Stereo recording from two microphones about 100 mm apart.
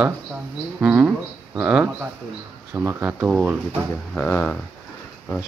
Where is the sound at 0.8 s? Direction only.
15° right (ahead or behind).